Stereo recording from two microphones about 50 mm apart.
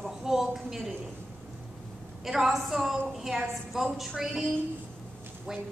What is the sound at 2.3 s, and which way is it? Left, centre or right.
A woman's voice, centre.